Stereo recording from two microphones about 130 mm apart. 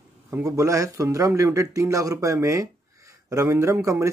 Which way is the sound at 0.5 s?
25° right (ahead or behind).